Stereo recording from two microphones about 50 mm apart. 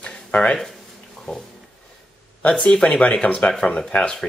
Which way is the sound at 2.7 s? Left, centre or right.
Centre.